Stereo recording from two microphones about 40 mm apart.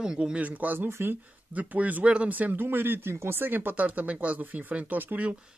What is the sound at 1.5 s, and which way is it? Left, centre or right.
Speech, right.